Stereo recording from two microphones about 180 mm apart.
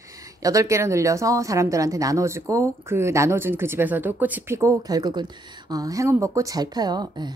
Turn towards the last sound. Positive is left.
turn(degrees=-25)  # may be behind; listen again after turning